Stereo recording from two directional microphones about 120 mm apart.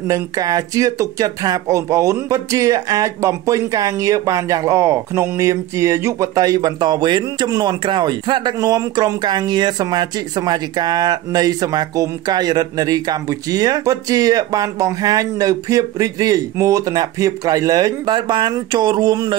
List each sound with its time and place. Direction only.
0.1 s speech: 30° right (ahead or behind)